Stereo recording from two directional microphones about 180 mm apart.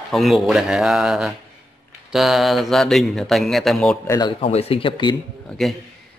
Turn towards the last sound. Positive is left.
turn(degrees=0)  # may be behind; listen again after turning